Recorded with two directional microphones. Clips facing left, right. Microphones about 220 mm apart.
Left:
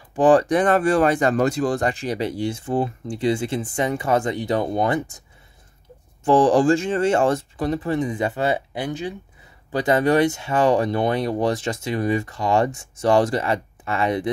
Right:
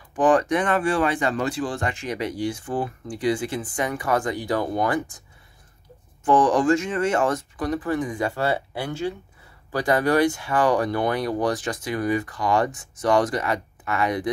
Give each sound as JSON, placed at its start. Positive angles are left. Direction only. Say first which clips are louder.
{"t": 0.1, "sound": "speech", "louder": "left 4 dB", "side_deg": 30}
{"t": 6.2, "sound": "speech", "louder": "left 3 dB", "side_deg": 30}